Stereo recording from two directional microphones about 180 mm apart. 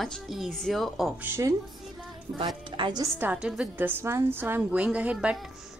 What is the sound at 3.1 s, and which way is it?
A woman's voice, 10° right (ahead or behind).